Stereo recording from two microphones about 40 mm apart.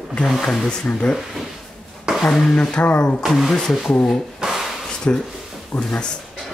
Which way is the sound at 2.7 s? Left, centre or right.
Left.